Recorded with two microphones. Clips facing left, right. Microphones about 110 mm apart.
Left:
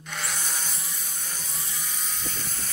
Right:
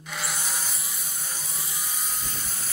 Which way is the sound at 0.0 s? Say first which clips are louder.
Right 1 dB; 5° right (ahead or behind).